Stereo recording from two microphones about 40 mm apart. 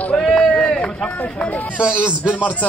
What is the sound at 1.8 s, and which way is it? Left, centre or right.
Speech, right.